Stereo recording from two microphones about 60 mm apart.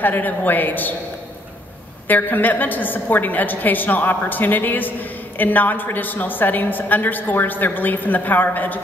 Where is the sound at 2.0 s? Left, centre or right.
Left.